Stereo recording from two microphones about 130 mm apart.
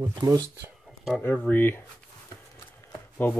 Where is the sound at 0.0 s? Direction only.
30° right (ahead or behind).